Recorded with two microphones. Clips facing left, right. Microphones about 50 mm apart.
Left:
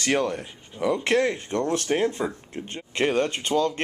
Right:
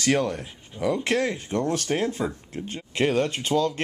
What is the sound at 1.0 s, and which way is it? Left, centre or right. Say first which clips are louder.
Speech: left 2 dB; centre.